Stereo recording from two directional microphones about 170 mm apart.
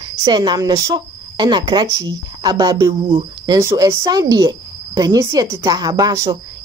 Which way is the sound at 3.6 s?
15° right (ahead or behind).